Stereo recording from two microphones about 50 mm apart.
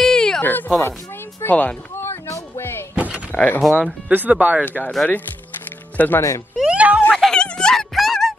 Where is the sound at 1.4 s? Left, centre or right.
Left.